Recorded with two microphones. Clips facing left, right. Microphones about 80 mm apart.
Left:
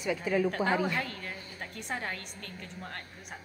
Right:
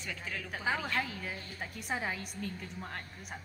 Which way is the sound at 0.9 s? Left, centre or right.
Centre.